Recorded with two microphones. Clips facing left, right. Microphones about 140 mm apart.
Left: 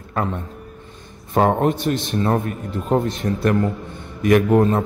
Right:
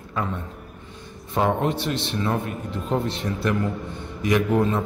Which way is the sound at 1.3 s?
50° left (ahead or behind).